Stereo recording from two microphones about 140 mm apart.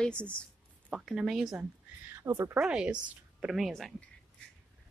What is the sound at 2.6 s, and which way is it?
Speech, 5° right (ahead or behind).